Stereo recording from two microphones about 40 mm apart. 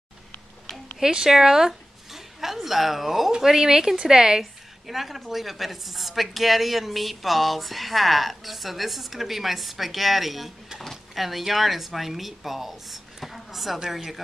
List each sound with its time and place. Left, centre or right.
0.9 s speech: centre
4.4 s a woman's voice: centre